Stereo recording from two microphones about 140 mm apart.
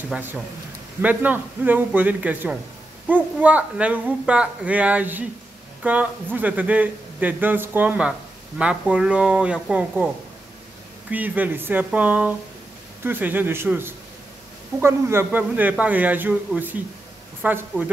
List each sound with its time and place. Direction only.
0.1 s speech: 15° right (ahead or behind)